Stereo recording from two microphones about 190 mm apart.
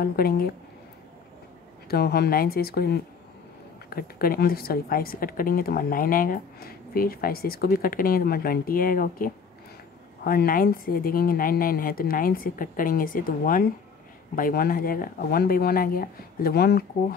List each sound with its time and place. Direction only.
0.0 s speech: 50° left (ahead or behind)
1.9 s a woman's voice: 55° left (ahead or behind)